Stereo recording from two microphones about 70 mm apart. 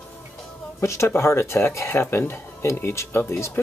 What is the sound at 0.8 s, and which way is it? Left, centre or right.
Speech, left.